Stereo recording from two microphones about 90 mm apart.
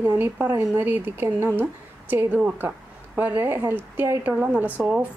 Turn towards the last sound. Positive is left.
turn(degrees=-15)  # may be behind; listen again after turning